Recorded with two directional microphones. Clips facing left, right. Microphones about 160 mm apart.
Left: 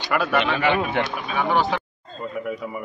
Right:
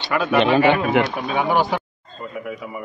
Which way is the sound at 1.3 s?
15° right (ahead or behind).